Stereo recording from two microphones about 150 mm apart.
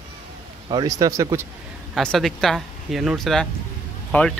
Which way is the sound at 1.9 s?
Centre (ahead or behind).